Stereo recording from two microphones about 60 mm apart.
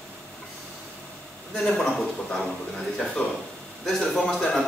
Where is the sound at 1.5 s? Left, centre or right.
Centre.